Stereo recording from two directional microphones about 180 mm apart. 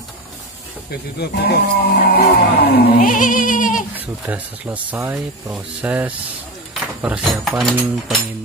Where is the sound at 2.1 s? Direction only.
55° left (ahead or behind).